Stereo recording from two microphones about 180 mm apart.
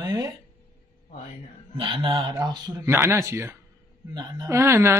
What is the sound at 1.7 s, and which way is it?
Speech, 30° right (ahead or behind).